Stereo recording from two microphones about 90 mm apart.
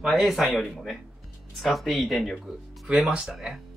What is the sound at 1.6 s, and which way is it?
Speech, centre (ahead or behind).